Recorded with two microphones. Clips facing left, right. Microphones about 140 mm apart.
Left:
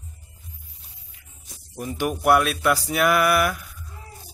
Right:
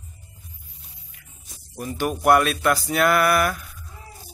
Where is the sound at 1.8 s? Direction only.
15° left (ahead or behind).